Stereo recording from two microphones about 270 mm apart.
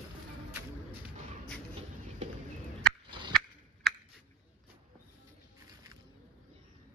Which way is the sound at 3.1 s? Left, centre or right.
Centre.